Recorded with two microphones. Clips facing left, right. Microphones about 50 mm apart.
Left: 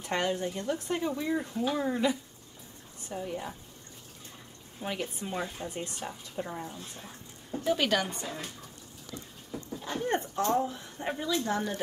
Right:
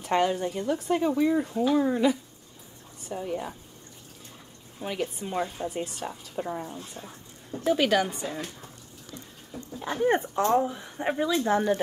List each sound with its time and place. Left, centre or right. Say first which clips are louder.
0.0 s speech: right 5 dB; centre
4.8 s speech: right 4 dB; centre
9.8 s speech: right 7 dB; right